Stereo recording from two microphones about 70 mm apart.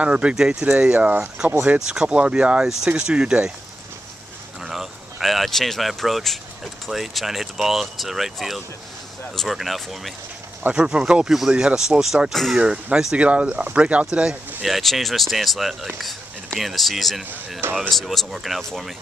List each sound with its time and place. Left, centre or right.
0.0 s speech: centre
4.6 s speech: centre
10.7 s speech: centre
12.5 s speech: centre
14.6 s speech: centre